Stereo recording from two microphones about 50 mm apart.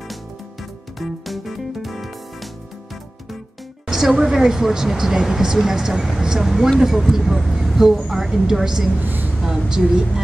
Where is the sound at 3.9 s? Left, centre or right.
Centre.